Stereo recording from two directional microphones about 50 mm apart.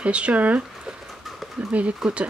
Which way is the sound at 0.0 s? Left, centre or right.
Right.